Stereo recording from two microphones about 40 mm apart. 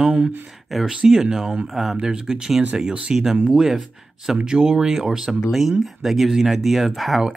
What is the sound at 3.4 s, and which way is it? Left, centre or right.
Speech, centre.